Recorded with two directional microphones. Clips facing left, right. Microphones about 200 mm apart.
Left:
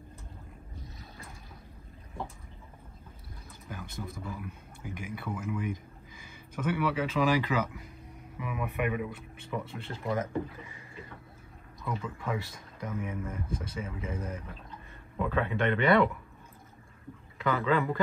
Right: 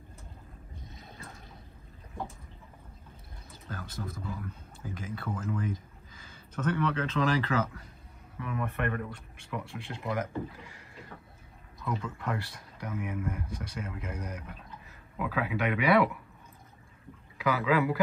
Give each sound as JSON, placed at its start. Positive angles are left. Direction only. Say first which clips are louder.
{"t": 3.7, "sound": "wild animals", "louder": "right 1 dB", "side_deg": 15}
{"t": 4.4, "sound": "speech", "louder": "even", "side_deg": 15}
{"t": 11.8, "sound": "speech", "louder": "right 1 dB", "side_deg": 5}
{"t": 17.4, "sound": "speech", "louder": "right 1 dB", "side_deg": -5}